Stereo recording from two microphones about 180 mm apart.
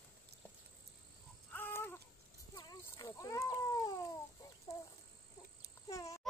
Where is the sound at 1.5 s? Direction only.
10° left (ahead or behind).